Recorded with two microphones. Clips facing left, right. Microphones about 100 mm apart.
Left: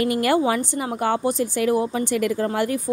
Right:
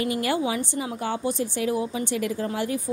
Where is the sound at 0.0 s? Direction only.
60° left (ahead or behind).